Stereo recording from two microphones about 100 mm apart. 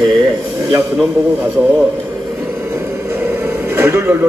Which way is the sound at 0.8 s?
15° right (ahead or behind).